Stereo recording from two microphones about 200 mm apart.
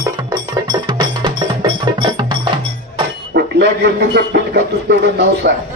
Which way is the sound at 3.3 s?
55° right (ahead or behind).